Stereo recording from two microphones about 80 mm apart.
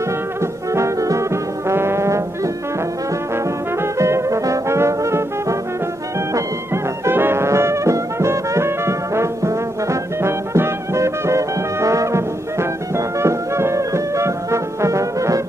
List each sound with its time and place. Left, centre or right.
0.4 s music: right
4.0 s brass instrument: right
6.3 s music: right